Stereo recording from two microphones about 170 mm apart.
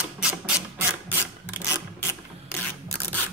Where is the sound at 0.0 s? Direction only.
5° right (ahead or behind).